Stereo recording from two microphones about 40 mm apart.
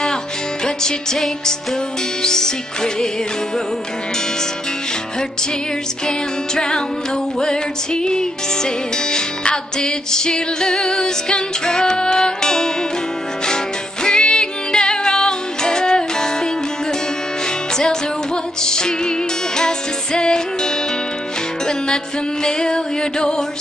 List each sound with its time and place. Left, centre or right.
0.8 s music: centre
6.0 s music: centre
14.0 s music: centre
17.7 s music: centre